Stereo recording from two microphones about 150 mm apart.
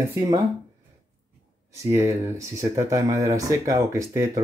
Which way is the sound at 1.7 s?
20° right (ahead or behind).